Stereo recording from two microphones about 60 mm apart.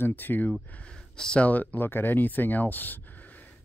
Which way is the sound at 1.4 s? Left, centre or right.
Left.